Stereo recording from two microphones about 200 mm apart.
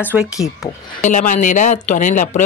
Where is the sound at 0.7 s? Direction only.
40° left (ahead or behind).